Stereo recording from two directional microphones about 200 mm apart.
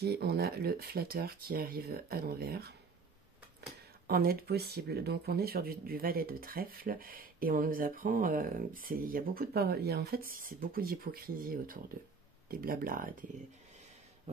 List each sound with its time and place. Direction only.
0.0 s speech: 55° right (ahead or behind)
4.1 s speech: 50° right (ahead or behind)